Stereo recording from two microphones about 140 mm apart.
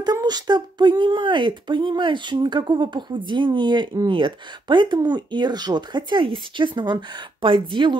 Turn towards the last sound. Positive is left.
turn(degrees=-35)  # may be behind; listen again after turning